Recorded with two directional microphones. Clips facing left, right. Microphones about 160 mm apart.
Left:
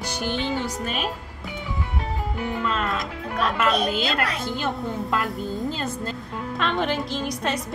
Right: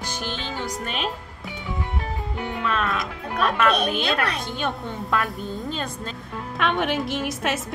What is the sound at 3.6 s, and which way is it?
A woman's voice, 60° right (ahead or behind).